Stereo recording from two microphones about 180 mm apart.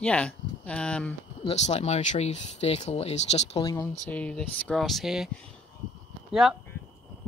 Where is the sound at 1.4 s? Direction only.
40° left (ahead or behind).